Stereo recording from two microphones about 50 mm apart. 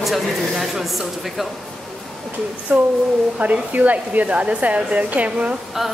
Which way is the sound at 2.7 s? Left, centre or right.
Right.